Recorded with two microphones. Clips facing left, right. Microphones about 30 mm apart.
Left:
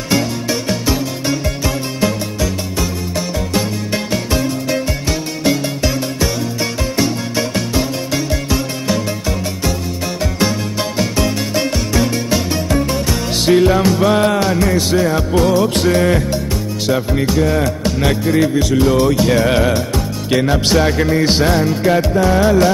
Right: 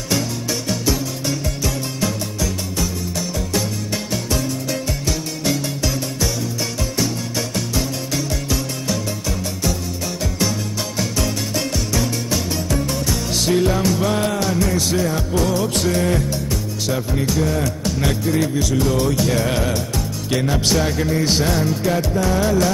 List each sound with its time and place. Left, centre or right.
0.1 s music: left
11.0 s music: left
16.8 s speech: left